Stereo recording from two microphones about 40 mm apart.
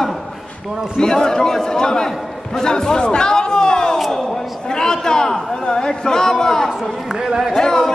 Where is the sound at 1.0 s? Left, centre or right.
Centre.